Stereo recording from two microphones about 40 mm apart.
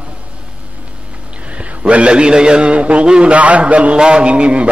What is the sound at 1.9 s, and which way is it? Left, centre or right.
A man's voice, right.